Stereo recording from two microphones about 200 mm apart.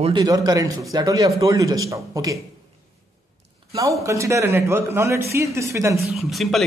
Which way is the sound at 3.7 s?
15° right (ahead or behind).